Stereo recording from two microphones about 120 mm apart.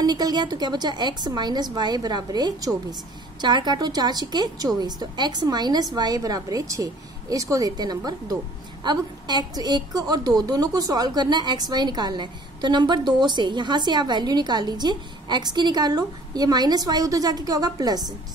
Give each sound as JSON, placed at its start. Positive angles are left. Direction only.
{"t": 0.0, "sound": "a woman's voice", "side_deg": -35}